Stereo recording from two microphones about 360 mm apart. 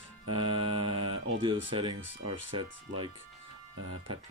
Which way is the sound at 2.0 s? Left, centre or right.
Right.